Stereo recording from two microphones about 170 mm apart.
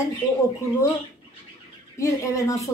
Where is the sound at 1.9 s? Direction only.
15° left (ahead or behind).